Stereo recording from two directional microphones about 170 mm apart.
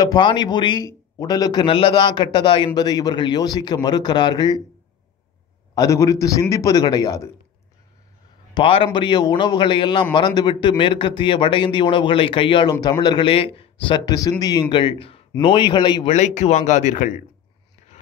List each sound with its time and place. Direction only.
0.0 s a man's voice: 25° left (ahead or behind)
5.8 s a man's voice: 20° left (ahead or behind)
8.5 s a man's voice: 30° left (ahead or behind)
16.1 s speech: 45° left (ahead or behind)